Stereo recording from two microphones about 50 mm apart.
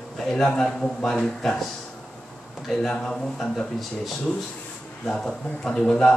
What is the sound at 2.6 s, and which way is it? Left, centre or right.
Speech, centre.